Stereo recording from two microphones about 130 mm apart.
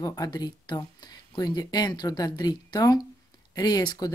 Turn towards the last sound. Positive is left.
turn(degrees=30)  # may be behind; listen again after turning